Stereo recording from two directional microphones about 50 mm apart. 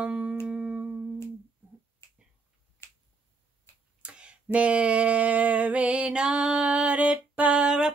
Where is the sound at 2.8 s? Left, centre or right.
Left.